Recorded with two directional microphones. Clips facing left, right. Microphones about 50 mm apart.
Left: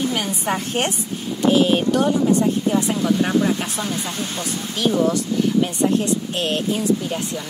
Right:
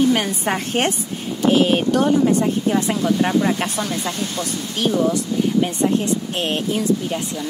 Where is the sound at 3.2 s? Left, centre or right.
Centre.